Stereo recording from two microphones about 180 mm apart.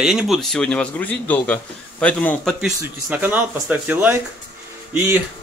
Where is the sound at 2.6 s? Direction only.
10° right (ahead or behind).